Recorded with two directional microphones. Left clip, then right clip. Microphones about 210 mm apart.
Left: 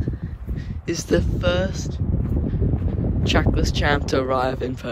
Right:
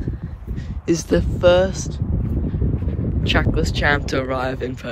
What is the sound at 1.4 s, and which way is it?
Speech, 5° right (ahead or behind).